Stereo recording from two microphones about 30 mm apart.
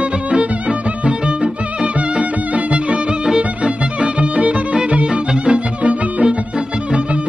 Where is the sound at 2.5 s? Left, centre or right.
Right.